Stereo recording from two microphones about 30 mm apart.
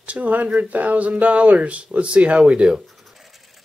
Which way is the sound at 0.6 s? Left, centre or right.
Right.